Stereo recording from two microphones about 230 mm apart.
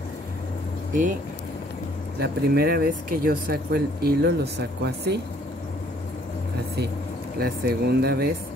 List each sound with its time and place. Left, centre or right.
2.1 s speech: right
7.3 s speech: right